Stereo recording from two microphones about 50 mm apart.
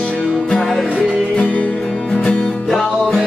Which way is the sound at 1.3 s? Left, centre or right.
Left.